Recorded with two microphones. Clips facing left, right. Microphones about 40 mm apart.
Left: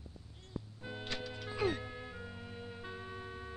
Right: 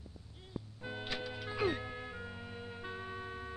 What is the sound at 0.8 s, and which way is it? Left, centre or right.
Music, centre.